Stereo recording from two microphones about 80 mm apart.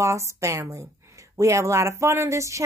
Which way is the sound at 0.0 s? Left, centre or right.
Right.